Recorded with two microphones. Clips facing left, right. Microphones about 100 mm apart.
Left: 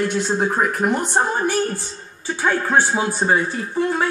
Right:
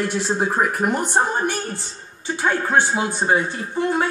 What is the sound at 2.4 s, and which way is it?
Speech, 15° right (ahead or behind).